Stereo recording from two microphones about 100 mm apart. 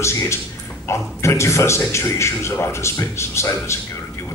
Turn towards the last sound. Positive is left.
turn(degrees=25)  # may be behind; listen again after turning